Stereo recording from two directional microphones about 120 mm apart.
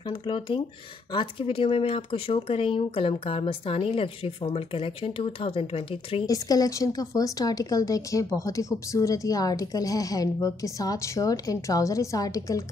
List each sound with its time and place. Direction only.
0.1 s speech: 45° left (ahead or behind)
6.2 s a woman's voice: 30° left (ahead or behind)